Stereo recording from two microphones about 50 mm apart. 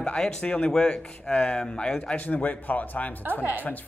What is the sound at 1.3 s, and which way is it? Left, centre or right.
A man's voice, left.